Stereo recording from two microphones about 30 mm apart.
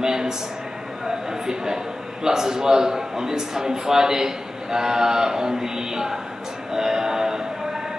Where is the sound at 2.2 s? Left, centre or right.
Centre.